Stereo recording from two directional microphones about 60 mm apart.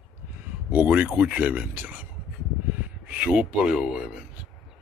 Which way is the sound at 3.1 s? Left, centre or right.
Centre.